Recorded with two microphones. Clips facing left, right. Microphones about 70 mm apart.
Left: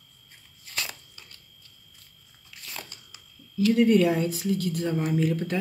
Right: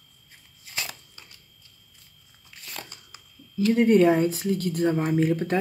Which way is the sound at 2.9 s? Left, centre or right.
Right.